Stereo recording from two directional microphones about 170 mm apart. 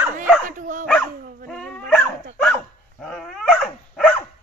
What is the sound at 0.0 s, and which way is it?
Dog, 10° right (ahead or behind).